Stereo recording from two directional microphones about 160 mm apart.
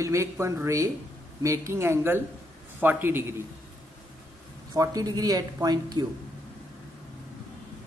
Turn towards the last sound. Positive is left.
turn(degrees=-25)  # may be behind; listen again after turning